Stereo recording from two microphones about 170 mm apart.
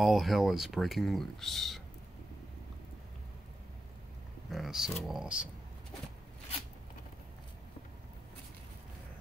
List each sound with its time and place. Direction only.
0.0 s speech: centre (ahead or behind)
4.5 s speech: centre (ahead or behind)